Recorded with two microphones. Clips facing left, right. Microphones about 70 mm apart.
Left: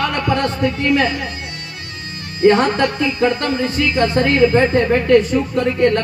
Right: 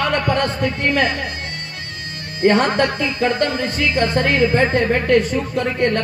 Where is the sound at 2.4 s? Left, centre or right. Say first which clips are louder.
Left 2 dB; right.